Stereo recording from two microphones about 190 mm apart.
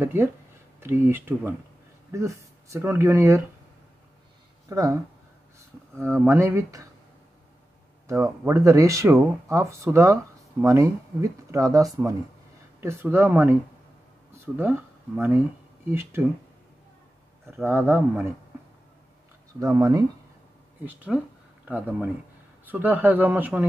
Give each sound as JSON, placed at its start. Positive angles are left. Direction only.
{"t": 0.0, "sound": "speech", "side_deg": -10}
{"t": 4.6, "sound": "speech", "side_deg": -15}
{"t": 6.2, "sound": "speech", "side_deg": -15}
{"t": 8.1, "sound": "speech", "side_deg": -15}
{"t": 17.6, "sound": "speech", "side_deg": -10}
{"t": 19.6, "sound": "speech", "side_deg": -15}
{"t": 22.7, "sound": "speech", "side_deg": -10}